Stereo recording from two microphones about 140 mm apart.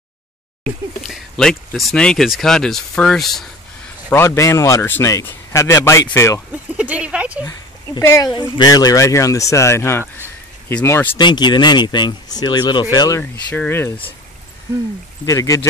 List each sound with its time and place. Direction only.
1.0 s speech: 5° left (ahead or behind)
4.4 s speech: 20° left (ahead or behind)
6.5 s speech: 10° right (ahead or behind)
7.4 s speech: 20° left (ahead or behind)
11.1 s speech: 30° left (ahead or behind)
13.2 s speech: 10° left (ahead or behind)
15.2 s speech: 25° left (ahead or behind)